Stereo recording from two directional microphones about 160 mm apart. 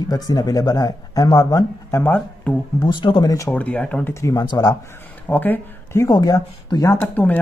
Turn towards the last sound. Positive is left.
turn(degrees=10)  # may be behind; listen again after turning